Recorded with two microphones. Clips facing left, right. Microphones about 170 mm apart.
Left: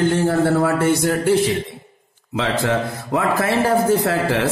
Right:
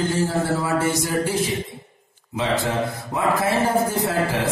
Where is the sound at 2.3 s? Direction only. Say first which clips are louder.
Left 2 dB; 80° left.